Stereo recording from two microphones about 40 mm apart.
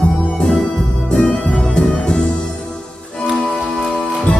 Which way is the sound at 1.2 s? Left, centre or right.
Left.